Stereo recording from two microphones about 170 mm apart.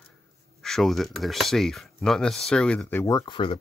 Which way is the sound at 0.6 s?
Centre (ahead or behind).